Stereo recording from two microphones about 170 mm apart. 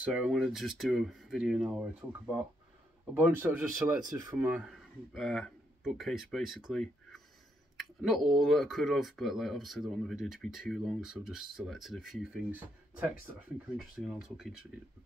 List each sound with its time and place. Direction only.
0.0 s speech: 5° right (ahead or behind)
5.1 s speech: 5° left (ahead or behind)